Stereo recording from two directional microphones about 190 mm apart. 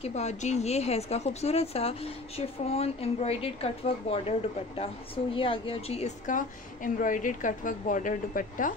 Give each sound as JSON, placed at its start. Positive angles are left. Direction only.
{"t": 0.0, "sound": "a woman's voice", "side_deg": 35}